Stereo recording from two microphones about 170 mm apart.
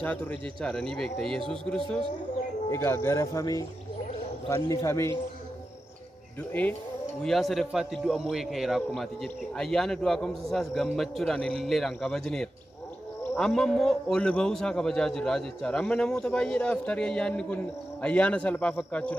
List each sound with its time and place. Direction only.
0.0 s a man's voice: 10° left (ahead or behind)
2.7 s a man's voice: 15° left (ahead or behind)
7.2 s a man's voice: centre (ahead or behind)